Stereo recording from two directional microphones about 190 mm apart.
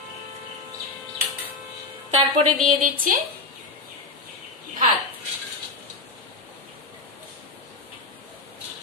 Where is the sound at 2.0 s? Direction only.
40° right (ahead or behind).